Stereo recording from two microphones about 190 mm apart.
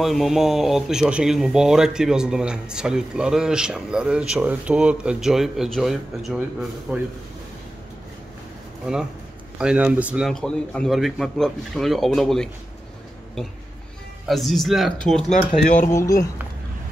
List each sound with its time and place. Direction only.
0.0 s a man's voice: centre (ahead or behind)
9.6 s speech: 5° right (ahead or behind)
14.2 s speech: centre (ahead or behind)
15.9 s speech: 15° left (ahead or behind)